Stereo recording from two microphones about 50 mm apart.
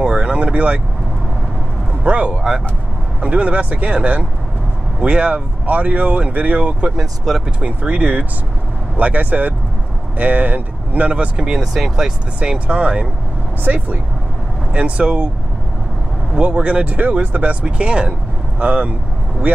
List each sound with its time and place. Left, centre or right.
0.0 s vehicle: right
2.0 s speech: right
2.3 s speech: centre
3.2 s speech: right
7.0 s speech: centre
7.6 s speech: right; by 12.1 s centre
12.4 s speech: right
16.3 s speech: right
19.4 s speech: right